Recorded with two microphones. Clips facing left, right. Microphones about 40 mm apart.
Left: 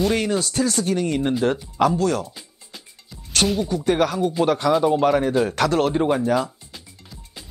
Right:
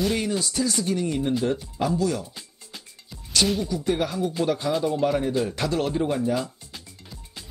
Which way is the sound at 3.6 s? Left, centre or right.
Left.